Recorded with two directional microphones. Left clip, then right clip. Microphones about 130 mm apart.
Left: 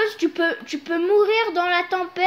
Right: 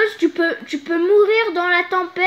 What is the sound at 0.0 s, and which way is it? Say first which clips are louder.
Speech: right 4 dB; 55° right (ahead or behind).